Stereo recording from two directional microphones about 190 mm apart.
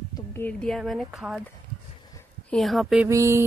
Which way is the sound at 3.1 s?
15° right (ahead or behind).